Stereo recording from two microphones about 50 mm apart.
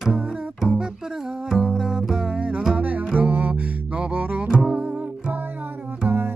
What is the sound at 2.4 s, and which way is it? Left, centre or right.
Music, right.